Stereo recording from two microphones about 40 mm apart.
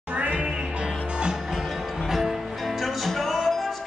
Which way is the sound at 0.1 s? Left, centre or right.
Right.